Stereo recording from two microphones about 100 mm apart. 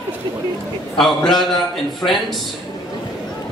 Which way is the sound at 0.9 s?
5° left (ahead or behind).